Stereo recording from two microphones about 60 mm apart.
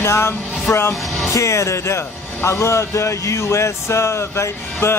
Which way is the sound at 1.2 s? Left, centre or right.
Left.